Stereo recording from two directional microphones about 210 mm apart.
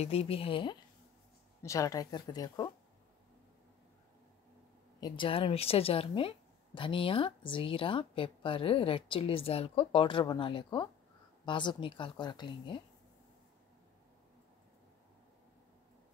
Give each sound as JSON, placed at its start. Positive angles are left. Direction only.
{"t": 0.0, "sound": "a woman's voice", "side_deg": 25}
{"t": 5.0, "sound": "a woman's voice", "side_deg": 25}